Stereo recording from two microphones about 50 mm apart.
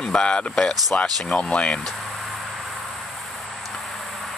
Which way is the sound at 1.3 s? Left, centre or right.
Centre.